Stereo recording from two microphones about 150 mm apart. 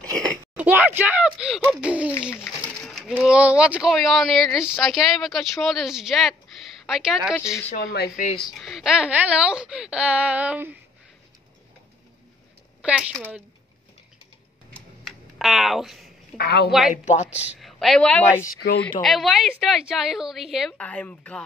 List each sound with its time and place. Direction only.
0.0 s a sound: 25° right (ahead or behind)
0.6 s a sound: 10° right (ahead or behind)
2.4 s pigeon: centre (ahead or behind)
3.3 s speech: 5° right (ahead or behind)
7.7 s speech: 75° left (ahead or behind)
8.5 s speech: centre (ahead or behind)
12.8 s speech: 5° right (ahead or behind)
14.7 s computer keyboard: centre (ahead or behind)
16.3 s a woman's voice: 90° left
16.9 s speech: 55° left (ahead or behind)
17.6 s a woman's voice: centre (ahead or behind)
20.8 s speech: 10° left (ahead or behind)